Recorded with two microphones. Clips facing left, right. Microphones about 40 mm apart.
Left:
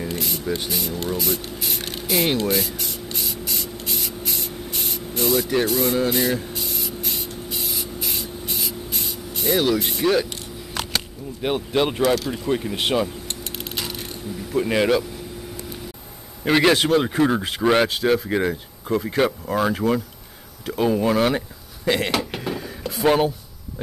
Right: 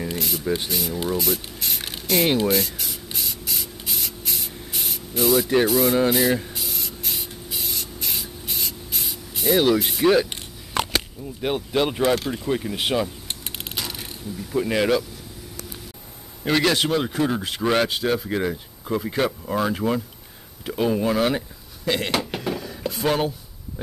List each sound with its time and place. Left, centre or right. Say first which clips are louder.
0.0 s speech: even; centre
2.3 s spray: right 1 dB; centre
5.7 s speech: right 2 dB; centre
6.5 s spray: left 3 dB; centre
10.8 s a sound: right 5 dB; right
11.4 s speech: left 1 dB; centre
13.3 s mechanisms: left 2 dB; centre
13.7 s coin: left 1 dB; centre
14.5 s speech: left 1 dB; centre
16.4 s speech: left 3 dB; centre
20.6 s a sound: left 2 dB; centre
23.0 s speech: left 4 dB; centre